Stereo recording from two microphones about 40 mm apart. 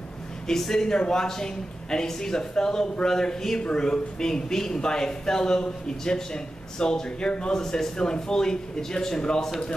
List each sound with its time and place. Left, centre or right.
0.5 s a man's voice: centre
7.6 s a man's voice: centre